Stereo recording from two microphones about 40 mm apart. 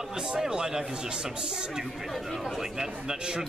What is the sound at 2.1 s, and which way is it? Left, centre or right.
Speech, centre.